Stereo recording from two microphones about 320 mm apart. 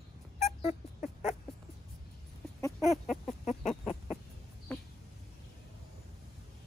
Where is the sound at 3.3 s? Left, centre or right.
Centre.